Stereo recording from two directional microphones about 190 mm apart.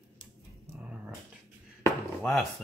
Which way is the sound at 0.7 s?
10° right (ahead or behind).